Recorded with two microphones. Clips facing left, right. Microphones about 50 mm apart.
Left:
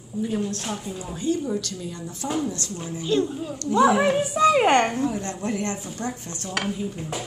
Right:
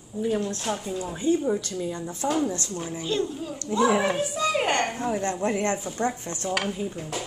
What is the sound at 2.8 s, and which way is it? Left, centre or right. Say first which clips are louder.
Speech: left 5 dB; centre.